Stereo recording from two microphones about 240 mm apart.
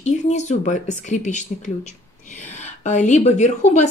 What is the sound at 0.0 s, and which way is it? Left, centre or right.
Speech, left.